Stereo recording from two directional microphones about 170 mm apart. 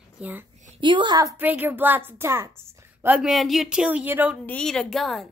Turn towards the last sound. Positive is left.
turn(degrees=0)  # may be behind; listen again after turning